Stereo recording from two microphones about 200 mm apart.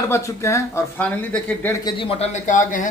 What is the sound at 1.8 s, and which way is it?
Speech, 25° left (ahead or behind).